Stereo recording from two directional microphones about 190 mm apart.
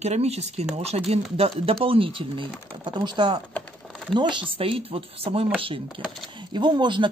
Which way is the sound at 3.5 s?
5° left (ahead or behind).